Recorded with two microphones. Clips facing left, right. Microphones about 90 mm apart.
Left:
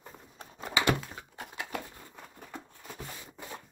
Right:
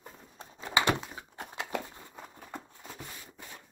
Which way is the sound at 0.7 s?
25° right (ahead or behind).